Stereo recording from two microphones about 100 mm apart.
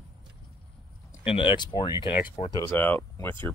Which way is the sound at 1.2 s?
60° left (ahead or behind).